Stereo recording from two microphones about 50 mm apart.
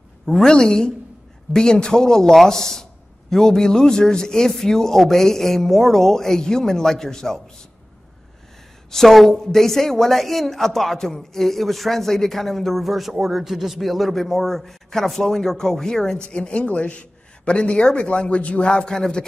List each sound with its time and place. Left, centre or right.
0.3 s a man's voice: centre
8.9 s a woman's voice: centre